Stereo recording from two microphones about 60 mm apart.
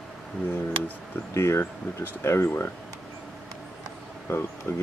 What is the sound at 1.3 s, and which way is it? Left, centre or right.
Speech, left.